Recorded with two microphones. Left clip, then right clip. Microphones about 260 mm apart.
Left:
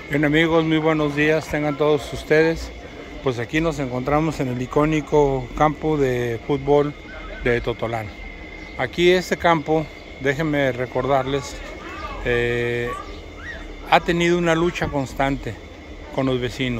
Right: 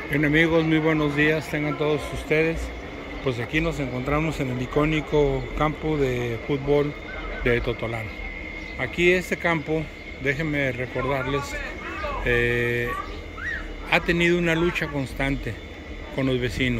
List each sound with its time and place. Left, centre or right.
0.1 s speech: centre